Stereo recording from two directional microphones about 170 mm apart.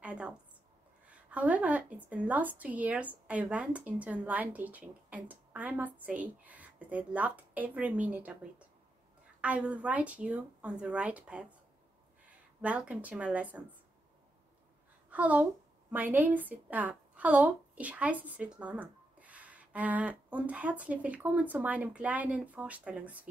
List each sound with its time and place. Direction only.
0.0 s a sound: 5° right (ahead or behind)
1.3 s a woman's voice: 10° right (ahead or behind)
12.6 s a woman's voice: 5° right (ahead or behind)
15.0 s a woman's voice: 10° right (ahead or behind)